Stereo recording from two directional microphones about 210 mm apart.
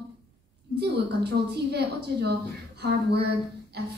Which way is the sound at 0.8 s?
50° right (ahead or behind).